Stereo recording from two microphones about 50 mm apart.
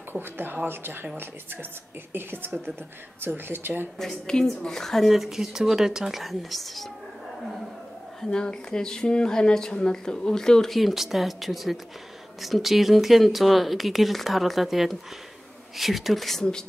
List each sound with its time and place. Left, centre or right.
0.1 s speech: right
4.0 s speech: centre
5.1 s speech: centre
6.2 s speech: centre
8.2 s speech: centre
10.8 s speech: centre